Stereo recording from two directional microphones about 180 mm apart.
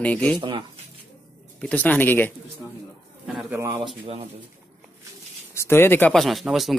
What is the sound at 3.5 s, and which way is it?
Speech, 15° right (ahead or behind).